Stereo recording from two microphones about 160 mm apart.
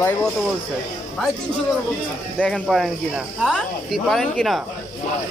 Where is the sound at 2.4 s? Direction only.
10° left (ahead or behind).